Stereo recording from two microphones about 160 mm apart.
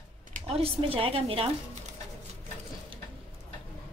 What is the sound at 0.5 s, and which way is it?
A woman's voice, 35° right (ahead or behind).